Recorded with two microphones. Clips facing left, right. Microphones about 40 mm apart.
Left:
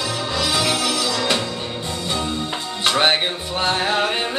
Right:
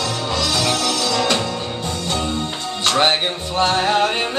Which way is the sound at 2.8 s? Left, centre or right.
Centre.